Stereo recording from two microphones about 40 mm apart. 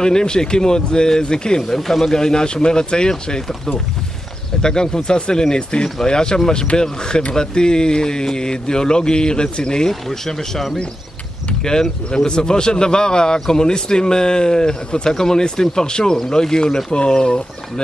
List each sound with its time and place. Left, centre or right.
0.0 s a man's voice: centre
1.7 s a man's voice: centre
11.6 s a man's voice: centre